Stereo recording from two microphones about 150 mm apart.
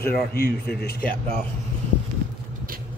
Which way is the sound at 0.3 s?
90° left.